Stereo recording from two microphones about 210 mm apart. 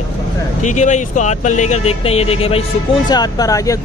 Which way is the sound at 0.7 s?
35° left (ahead or behind).